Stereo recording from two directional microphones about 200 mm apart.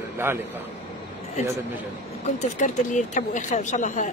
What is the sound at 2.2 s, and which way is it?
Speech, 35° left (ahead or behind).